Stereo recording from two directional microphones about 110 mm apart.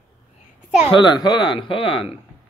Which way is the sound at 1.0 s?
40° left (ahead or behind).